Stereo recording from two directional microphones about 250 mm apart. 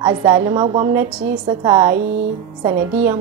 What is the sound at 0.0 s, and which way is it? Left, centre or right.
A woman's voice, centre.